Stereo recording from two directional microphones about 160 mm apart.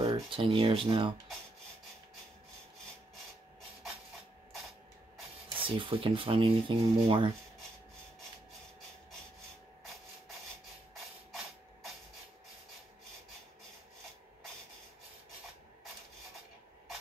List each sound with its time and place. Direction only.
0.0 s speech: 30° right (ahead or behind)
5.6 s speech: 35° right (ahead or behind)